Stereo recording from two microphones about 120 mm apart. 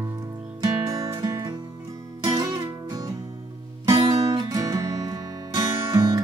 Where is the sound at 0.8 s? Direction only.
30° right (ahead or behind).